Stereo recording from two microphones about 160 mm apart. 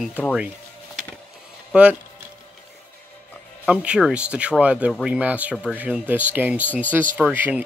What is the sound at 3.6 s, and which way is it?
Speech, 5° right (ahead or behind).